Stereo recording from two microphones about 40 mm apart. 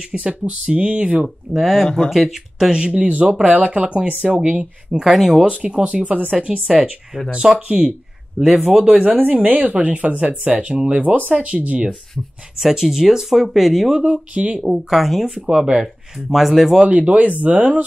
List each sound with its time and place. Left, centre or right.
0.4 s speech: right
1.6 s speech: centre
2.7 s speech: right
5.0 s speech: centre
5.4 s speech: right
7.4 s speech: centre
8.6 s speech: centre
9.1 s speech: right
11.0 s speech: right
12.5 s speech: centre
13.9 s speech: right
14.6 s speech: centre
16.8 s speech: right